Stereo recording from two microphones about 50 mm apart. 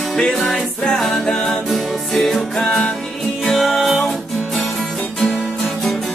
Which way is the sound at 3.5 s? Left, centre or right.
Centre.